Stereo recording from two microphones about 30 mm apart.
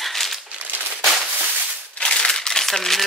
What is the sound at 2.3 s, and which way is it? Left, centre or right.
Crumpling, centre.